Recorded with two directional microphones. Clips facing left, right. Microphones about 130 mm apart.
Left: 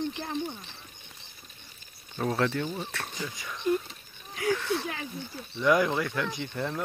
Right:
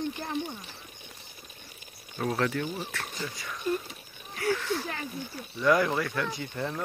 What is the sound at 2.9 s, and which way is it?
Speech, 25° left (ahead or behind).